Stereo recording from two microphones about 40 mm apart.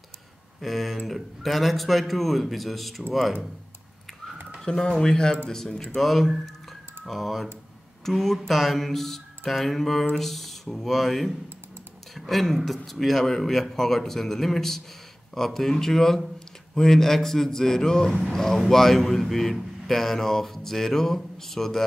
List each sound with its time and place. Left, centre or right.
0.6 s a man's voice: centre
4.6 s a man's voice: centre